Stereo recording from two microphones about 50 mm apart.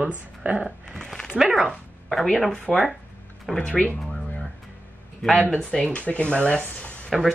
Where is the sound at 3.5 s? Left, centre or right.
Left.